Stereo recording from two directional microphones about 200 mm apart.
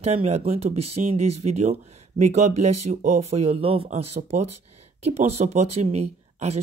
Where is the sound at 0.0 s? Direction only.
30° right (ahead or behind).